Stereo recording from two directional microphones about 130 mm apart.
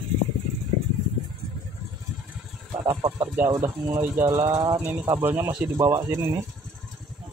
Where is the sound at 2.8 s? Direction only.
30° right (ahead or behind).